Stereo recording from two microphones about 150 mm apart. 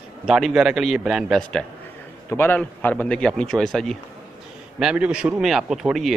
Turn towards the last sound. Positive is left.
turn(degrees=0)  # may be behind; listen again after turning